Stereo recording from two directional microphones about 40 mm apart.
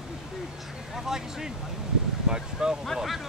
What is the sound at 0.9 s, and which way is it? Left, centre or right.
Speech, centre.